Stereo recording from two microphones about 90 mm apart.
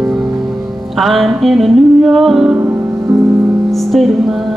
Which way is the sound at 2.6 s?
25° right (ahead or behind).